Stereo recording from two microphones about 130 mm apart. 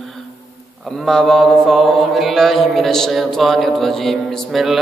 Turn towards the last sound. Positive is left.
turn(degrees=0)  # may be behind; listen again after turning